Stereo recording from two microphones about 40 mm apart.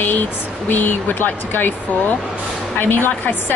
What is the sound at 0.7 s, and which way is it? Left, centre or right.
Speech, left.